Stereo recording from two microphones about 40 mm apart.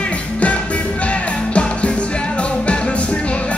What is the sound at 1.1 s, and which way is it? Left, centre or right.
Music, left.